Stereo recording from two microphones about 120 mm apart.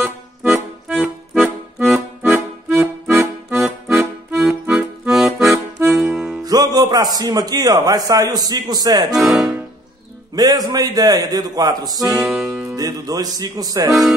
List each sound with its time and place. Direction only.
0.0 s accordion: 15° right (ahead or behind)
4.6 s accordion: 5° right (ahead or behind)
5.9 s music: 5° right (ahead or behind)
6.4 s a man's voice: 30° right (ahead or behind)
9.1 s speech: centre (ahead or behind)
10.3 s a man's voice: 30° right (ahead or behind)
12.1 s music: centre (ahead or behind)
12.7 s a man's voice: 30° right (ahead or behind)